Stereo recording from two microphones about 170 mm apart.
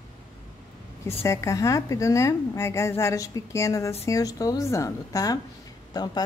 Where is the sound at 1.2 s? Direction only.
15° left (ahead or behind).